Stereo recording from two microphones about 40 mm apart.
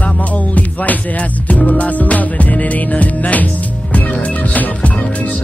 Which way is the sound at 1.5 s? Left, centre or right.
Left.